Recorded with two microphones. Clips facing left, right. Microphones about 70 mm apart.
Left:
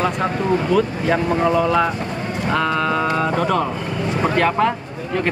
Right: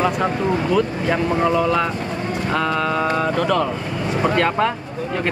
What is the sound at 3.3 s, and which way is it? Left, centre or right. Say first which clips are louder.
Speech: even; centre.